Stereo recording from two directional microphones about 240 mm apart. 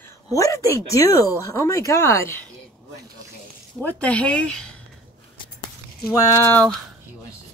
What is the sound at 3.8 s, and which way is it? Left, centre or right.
Speech, centre.